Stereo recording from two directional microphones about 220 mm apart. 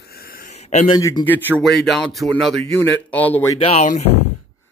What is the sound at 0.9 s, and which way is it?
Speech, 15° left (ahead or behind).